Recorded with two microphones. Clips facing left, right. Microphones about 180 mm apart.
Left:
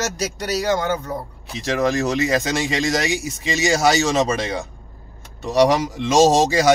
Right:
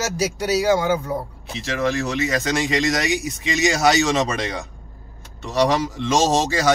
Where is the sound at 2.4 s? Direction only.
Centre (ahead or behind).